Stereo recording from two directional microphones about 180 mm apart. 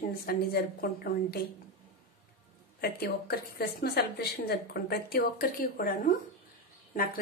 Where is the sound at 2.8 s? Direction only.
60° left (ahead or behind).